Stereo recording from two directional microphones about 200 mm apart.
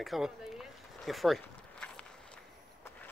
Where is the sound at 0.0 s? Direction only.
Centre (ahead or behind).